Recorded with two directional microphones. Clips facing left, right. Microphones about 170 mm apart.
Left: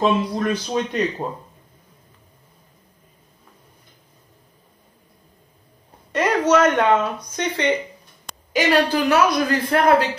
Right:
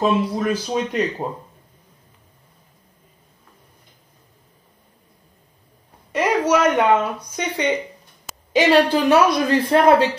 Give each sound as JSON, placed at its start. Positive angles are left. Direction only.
{"t": 0.0, "sound": "speech", "side_deg": -5}
{"t": 6.1, "sound": "speech", "side_deg": -10}
{"t": 8.5, "sound": "a man's voice", "side_deg": -25}